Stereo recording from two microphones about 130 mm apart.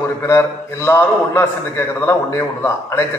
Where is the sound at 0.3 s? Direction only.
20° left (ahead or behind).